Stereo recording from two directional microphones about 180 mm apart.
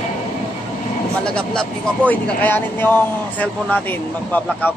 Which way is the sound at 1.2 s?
5° left (ahead or behind).